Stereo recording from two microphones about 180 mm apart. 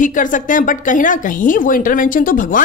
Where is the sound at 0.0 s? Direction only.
45° left (ahead or behind).